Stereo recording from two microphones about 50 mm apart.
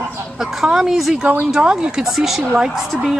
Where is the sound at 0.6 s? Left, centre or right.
Centre.